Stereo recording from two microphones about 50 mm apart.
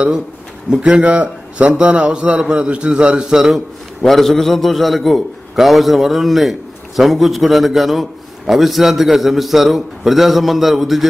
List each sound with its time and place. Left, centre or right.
0.7 s a man's voice: right
4.0 s a man's voice: centre